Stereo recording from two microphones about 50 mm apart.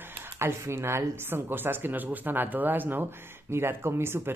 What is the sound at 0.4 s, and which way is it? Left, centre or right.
Speech, right.